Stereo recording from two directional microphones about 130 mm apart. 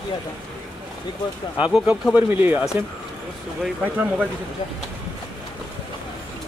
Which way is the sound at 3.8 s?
10° right (ahead or behind).